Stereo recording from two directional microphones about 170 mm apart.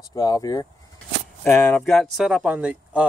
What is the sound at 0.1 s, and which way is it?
A man's voice, 20° left (ahead or behind).